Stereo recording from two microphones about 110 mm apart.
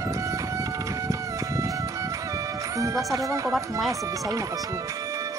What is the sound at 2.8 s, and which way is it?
Speech, 30° right (ahead or behind).